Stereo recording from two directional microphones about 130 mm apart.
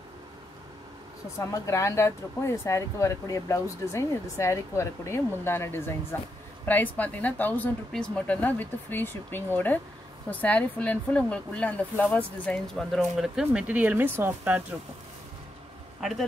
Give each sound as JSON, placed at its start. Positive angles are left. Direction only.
{"t": 1.4, "sound": "speech", "side_deg": 25}